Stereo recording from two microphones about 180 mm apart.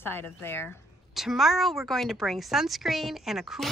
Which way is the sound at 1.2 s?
Centre (ahead or behind).